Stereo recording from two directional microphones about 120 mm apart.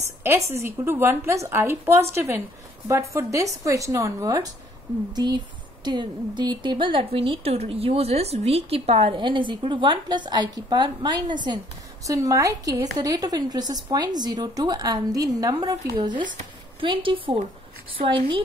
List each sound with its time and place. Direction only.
0.2 s a woman's voice: 20° right (ahead or behind); by 18.4 s 45° right (ahead or behind)